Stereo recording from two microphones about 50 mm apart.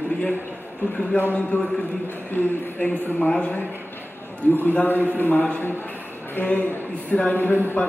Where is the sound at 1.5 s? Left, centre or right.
Left.